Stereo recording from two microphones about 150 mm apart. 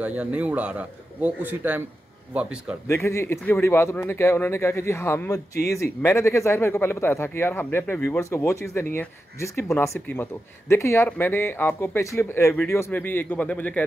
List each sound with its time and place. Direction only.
0.0 s a man's voice: 10° right (ahead or behind)
2.9 s speech: 20° left (ahead or behind)